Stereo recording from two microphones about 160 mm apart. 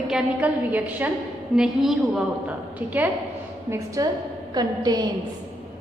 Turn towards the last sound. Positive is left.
turn(degrees=-25)  # may be behind; listen again after turning